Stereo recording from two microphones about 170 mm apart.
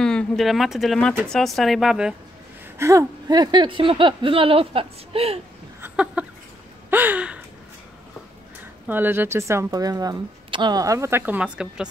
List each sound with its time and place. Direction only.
0.0 s speech: 5° left (ahead or behind)
2.8 s speech: 20° right (ahead or behind); by 5.4 s 35° right (ahead or behind)
5.8 s a sound: 10° right (ahead or behind)
6.9 s gasp: 10° right (ahead or behind)
8.8 s speech: 10° right (ahead or behind)